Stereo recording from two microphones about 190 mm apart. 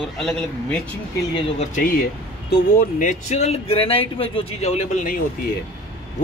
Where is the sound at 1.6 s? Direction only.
45° left (ahead or behind).